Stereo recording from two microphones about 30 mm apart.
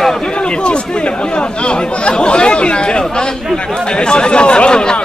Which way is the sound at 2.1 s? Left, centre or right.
Left.